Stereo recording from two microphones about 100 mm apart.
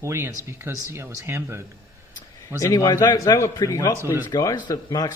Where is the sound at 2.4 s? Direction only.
30° left (ahead or behind).